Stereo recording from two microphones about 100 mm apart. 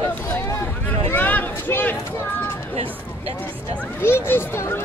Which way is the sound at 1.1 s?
15° left (ahead or behind).